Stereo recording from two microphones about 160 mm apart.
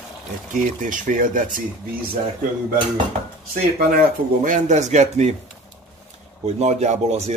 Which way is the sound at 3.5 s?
65° right (ahead or behind).